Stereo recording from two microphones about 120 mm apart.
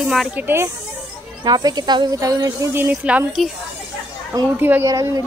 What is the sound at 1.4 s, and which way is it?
Speech, 35° right (ahead or behind).